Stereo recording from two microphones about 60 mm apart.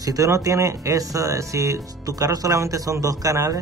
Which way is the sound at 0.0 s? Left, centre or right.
Right.